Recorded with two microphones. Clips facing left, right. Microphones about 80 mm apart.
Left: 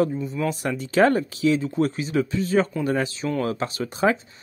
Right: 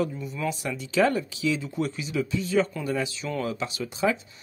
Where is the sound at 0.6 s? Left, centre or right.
Left.